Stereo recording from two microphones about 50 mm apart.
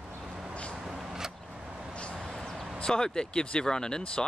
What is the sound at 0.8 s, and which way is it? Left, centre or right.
Vehicle, centre.